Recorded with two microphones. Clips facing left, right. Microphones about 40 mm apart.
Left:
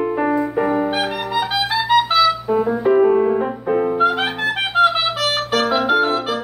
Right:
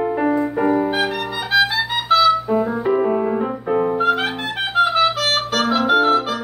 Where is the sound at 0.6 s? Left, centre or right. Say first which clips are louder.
Right 3 dB; left.